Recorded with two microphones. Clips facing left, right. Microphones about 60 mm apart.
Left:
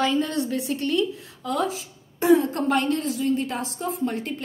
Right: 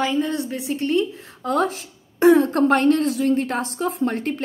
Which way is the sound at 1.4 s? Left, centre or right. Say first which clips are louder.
Right 4 dB; right.